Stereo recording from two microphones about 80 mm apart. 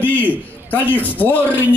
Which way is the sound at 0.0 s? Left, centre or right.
Left.